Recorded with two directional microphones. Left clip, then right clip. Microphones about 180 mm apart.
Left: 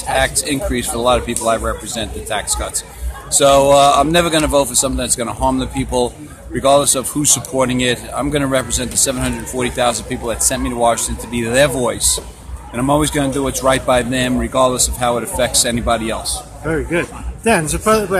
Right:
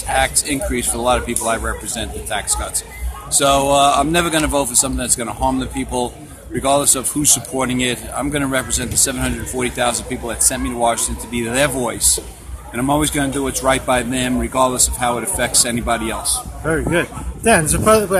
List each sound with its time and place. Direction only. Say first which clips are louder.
0.1 s speech: left 1 dB; 20° left (ahead or behind)
16.6 s a man's voice: right 1 dB; 15° right (ahead or behind)